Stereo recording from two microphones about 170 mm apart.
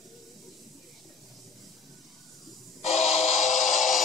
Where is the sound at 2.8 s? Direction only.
40° left (ahead or behind).